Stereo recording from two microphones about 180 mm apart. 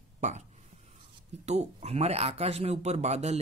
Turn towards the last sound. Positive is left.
turn(degrees=-40)  # may be behind; listen again after turning